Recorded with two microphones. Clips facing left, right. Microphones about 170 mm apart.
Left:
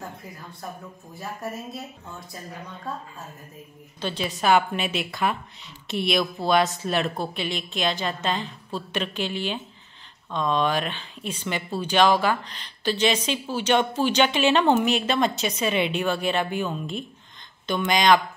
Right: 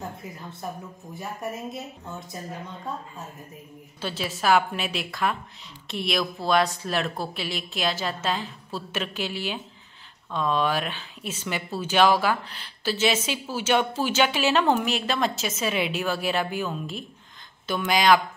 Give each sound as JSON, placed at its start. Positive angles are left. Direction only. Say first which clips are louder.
{"t": 1.1, "sound": "speech", "louder": "even", "side_deg": -20}
{"t": 4.0, "sound": "a woman's voice", "louder": "left 2 dB", "side_deg": -5}